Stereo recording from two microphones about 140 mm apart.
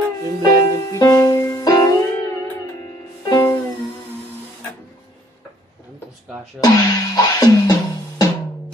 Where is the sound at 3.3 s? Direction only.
30° left (ahead or behind).